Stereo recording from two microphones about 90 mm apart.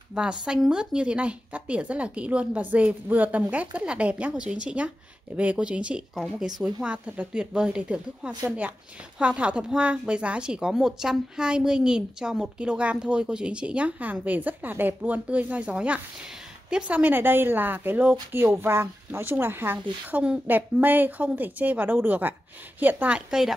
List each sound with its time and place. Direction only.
0.1 s a woman's voice: 10° right (ahead or behind)